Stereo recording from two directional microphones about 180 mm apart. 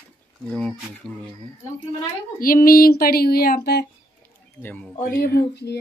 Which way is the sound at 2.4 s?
50° left (ahead or behind).